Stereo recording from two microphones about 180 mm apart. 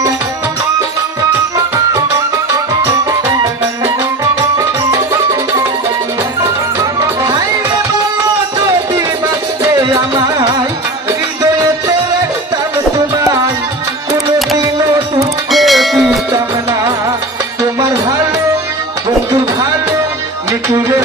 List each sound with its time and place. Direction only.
4.6 s music: 20° right (ahead or behind)
9.6 s music: 20° right (ahead or behind)
12.9 s music: 15° right (ahead or behind)
14.6 s music: 20° right (ahead or behind)
15.5 s music: centre (ahead or behind)
17.7 s music: 15° right (ahead or behind)